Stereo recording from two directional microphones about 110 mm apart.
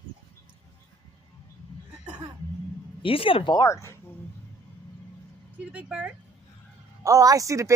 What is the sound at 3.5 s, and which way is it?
Speech, 30° left (ahead or behind).